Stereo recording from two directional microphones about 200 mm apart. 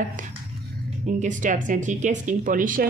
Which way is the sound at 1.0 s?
40° right (ahead or behind).